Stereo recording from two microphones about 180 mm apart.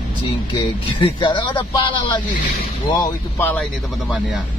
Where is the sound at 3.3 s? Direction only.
10° left (ahead or behind).